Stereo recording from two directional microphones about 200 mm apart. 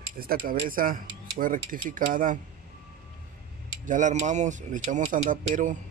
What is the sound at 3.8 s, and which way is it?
Speech, 40° right (ahead or behind).